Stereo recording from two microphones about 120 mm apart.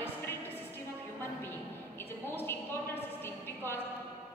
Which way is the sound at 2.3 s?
20° left (ahead or behind).